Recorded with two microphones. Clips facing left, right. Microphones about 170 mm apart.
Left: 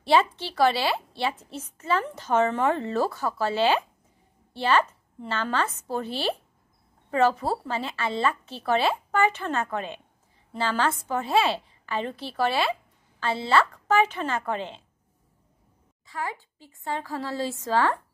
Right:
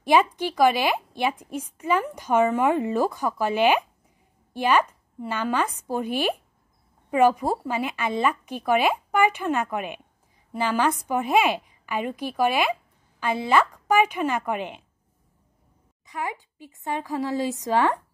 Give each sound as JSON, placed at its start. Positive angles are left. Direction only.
{"t": 0.0, "sound": "a woman's voice", "side_deg": -15}
{"t": 16.1, "sound": "a woman's voice", "side_deg": -15}